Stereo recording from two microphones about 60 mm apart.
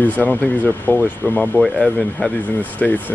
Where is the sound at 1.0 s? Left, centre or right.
Centre.